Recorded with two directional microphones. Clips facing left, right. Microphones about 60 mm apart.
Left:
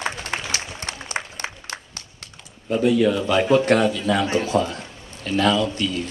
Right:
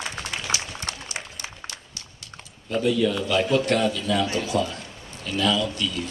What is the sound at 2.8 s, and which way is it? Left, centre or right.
Speech, left.